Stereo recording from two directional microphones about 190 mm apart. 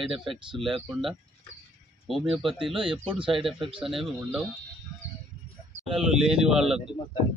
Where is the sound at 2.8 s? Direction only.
25° right (ahead or behind).